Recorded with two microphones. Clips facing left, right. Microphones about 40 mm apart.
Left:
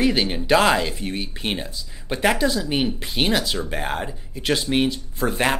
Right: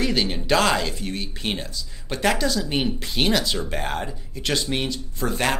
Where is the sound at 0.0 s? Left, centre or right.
Centre.